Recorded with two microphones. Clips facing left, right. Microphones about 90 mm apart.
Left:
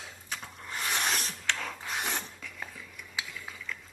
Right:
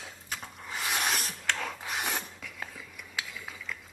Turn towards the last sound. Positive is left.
turn(degrees=0)  # may be behind; listen again after turning